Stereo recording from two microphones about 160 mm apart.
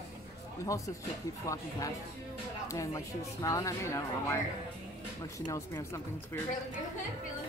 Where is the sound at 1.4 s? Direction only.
20° left (ahead or behind).